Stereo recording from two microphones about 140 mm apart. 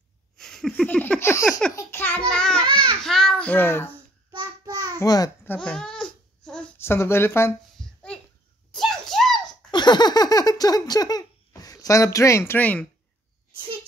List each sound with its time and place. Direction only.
0.4 s a sound: 5° left (ahead or behind)
0.8 s baby laughter: 10° left (ahead or behind)
1.8 s child singing: 15° left (ahead or behind)
3.0 s babbling: 5° left (ahead or behind)
4.3 s child singing: 30° right (ahead or behind)
4.9 s babbling: 25° left (ahead or behind)
5.5 s babbling: 5° left (ahead or behind)
6.8 s speech: 15° left (ahead or behind)
7.8 s a sound: 5° left (ahead or behind)
9.7 s giggle: 30° left (ahead or behind); by 12.8 s 10° left (ahead or behind)